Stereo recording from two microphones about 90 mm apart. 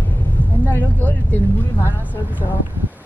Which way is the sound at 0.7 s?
20° left (ahead or behind).